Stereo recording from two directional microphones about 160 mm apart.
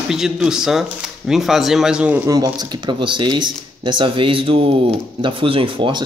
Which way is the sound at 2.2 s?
25° right (ahead or behind).